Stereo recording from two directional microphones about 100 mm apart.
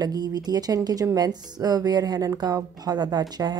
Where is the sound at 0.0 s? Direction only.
40° right (ahead or behind).